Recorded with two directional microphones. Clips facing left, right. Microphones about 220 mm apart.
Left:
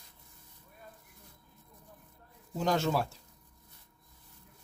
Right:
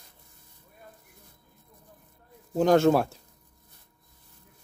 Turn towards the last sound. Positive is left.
turn(degrees=-55)  # may be behind; listen again after turning